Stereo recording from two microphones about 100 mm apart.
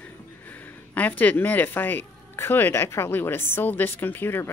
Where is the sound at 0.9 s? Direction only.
15° left (ahead or behind).